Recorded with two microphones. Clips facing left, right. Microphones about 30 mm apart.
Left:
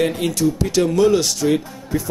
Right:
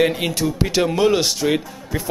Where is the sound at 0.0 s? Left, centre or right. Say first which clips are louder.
Even; right.